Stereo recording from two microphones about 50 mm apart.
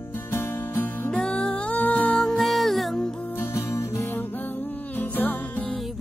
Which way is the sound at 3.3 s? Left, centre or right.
Left.